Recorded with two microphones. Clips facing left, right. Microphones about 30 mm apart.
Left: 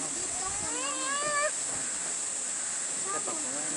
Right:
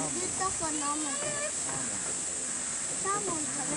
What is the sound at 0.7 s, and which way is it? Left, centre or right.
Splash, left.